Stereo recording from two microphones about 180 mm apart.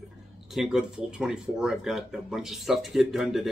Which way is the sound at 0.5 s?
5° right (ahead or behind).